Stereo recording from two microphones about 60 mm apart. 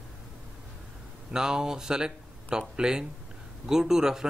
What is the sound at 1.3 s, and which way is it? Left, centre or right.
Speech, centre.